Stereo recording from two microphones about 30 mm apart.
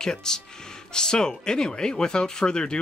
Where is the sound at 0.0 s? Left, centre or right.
Left.